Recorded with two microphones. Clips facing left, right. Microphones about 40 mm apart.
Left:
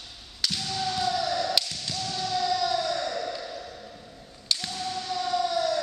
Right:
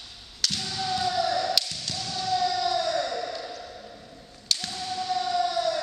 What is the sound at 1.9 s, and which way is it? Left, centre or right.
Basketball bounce, centre.